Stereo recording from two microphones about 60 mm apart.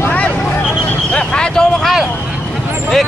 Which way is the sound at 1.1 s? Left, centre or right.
Centre.